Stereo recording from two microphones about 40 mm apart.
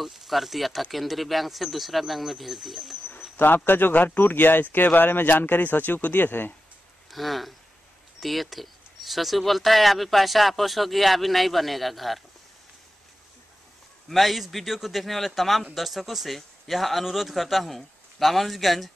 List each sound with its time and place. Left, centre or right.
0.0 s speech: centre
3.2 s speech: left
7.1 s speech: centre
14.0 s speech: centre